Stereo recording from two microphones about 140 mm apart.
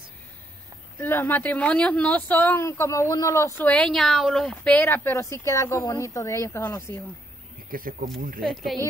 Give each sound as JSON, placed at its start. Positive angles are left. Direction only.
{"t": 0.9, "sound": "speech", "side_deg": 15}
{"t": 7.7, "sound": "speech", "side_deg": -90}
{"t": 8.4, "sound": "speech", "side_deg": 0}